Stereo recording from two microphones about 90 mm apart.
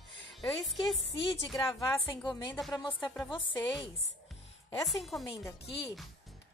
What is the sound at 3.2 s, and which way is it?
Speech, 60° left (ahead or behind).